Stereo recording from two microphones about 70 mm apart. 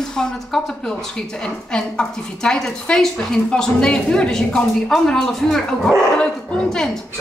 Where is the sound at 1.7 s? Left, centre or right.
Centre.